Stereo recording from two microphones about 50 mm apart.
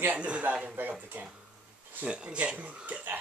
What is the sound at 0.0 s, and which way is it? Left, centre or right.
Speech, right.